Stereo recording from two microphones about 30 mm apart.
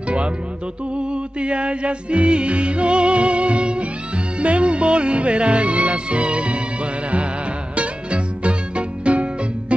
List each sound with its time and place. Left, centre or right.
1.1 s music: right
7.7 s music: right